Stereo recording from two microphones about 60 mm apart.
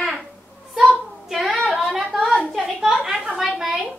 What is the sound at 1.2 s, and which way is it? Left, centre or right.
Child singing, centre.